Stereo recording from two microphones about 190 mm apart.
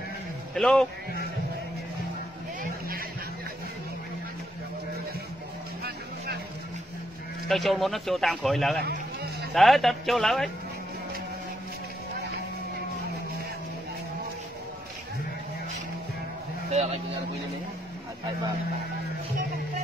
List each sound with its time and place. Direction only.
0.6 s a man's voice: 5° left (ahead or behind)
7.4 s a man's voice: centre (ahead or behind)
8.8 s run: 60° right (ahead or behind)
9.5 s a man's voice: centre (ahead or behind)
16.7 s speech: 35° right (ahead or behind)